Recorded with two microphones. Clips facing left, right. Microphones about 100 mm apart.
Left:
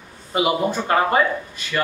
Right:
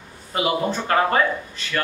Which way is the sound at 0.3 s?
15° left (ahead or behind).